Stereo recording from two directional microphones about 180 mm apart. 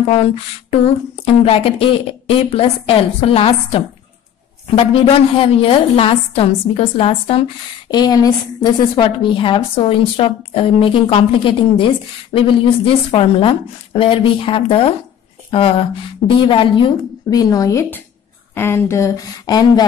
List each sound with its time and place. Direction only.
0.1 s a sound: 35° left (ahead or behind)
4.6 s a woman's voice: 30° left (ahead or behind)
16.3 s a woman's voice: 30° left (ahead or behind)